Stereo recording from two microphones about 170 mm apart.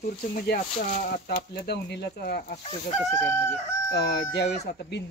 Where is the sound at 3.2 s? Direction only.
15° left (ahead or behind).